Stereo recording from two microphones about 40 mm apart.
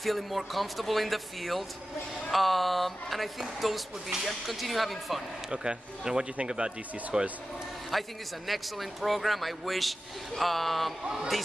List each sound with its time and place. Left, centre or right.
0.0 s speech: centre
5.5 s speech: right
7.9 s speech: centre